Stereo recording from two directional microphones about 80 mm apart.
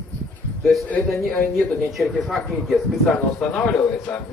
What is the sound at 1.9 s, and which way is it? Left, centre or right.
Speech, centre.